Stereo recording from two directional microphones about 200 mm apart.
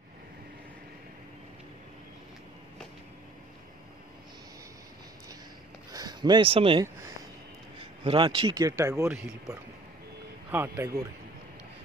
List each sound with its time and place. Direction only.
5.9 s speech: 20° right (ahead or behind)
8.0 s speech: 25° right (ahead or behind)
10.5 s speech: 10° right (ahead or behind)